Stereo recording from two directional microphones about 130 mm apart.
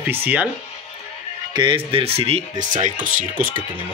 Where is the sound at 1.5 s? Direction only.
40° right (ahead or behind).